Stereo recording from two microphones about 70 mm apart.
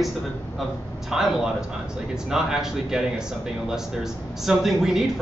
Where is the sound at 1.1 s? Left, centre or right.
Centre.